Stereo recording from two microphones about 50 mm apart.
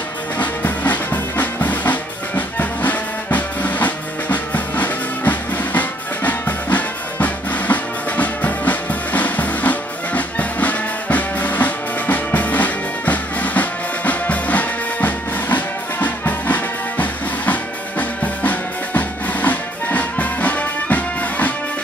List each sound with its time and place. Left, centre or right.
0.4 s drum: left